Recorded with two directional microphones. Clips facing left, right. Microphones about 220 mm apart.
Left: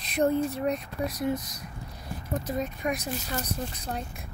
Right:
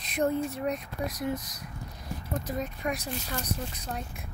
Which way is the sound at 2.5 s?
20° left (ahead or behind).